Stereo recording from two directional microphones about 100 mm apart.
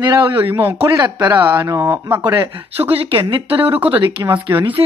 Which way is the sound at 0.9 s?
45° right (ahead or behind).